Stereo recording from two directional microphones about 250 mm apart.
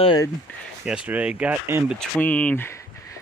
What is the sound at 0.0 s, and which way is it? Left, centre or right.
Speech, centre.